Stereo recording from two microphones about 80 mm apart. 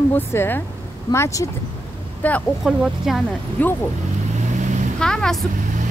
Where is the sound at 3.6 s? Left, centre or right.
Left.